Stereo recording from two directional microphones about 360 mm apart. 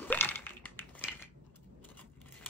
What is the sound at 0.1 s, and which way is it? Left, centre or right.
Crushing, centre.